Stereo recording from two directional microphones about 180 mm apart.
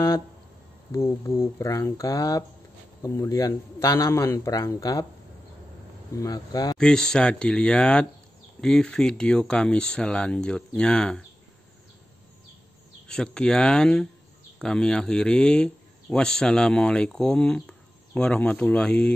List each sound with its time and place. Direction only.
0.9 s a man's voice: 15° left (ahead or behind)
6.1 s speech: 20° left (ahead or behind)
6.8 s speech: 5° left (ahead or behind)
13.1 s speech: 5° left (ahead or behind)